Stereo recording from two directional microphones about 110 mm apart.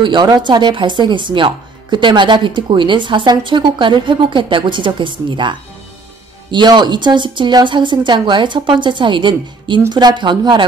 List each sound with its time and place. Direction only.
0.0 s speech: 45° right (ahead or behind)